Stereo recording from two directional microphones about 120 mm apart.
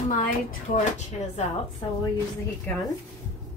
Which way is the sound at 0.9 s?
75° left (ahead or behind).